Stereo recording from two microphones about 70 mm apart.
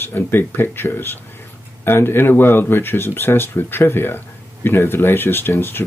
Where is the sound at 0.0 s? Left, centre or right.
Left.